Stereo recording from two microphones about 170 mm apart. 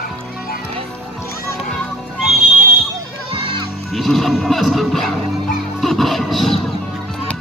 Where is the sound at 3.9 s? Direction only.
Centre (ahead or behind).